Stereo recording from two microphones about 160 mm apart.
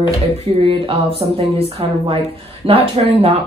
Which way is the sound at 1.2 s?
40° right (ahead or behind).